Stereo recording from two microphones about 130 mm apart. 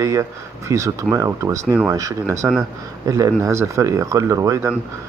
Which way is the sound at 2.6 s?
25° right (ahead or behind).